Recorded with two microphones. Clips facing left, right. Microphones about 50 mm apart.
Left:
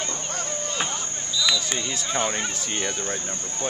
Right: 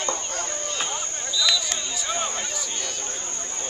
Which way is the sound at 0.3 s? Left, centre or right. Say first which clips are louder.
Even; centre.